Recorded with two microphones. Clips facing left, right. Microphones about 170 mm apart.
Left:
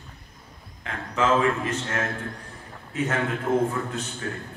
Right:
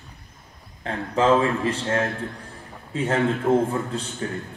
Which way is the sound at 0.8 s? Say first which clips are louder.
Right 4 dB; 35° right (ahead or behind).